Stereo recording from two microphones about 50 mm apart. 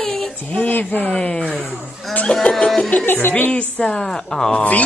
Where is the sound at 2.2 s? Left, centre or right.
Centre.